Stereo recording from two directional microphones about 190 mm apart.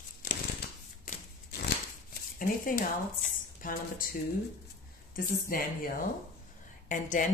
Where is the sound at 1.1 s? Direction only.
45° left (ahead or behind).